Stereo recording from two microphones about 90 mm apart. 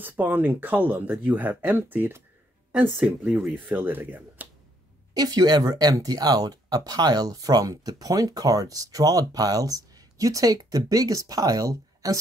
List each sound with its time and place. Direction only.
0.0 s speech: 20° right (ahead or behind)
5.1 s speech: 45° right (ahead or behind)